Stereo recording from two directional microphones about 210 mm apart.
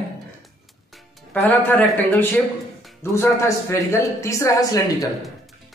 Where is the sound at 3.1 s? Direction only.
15° left (ahead or behind).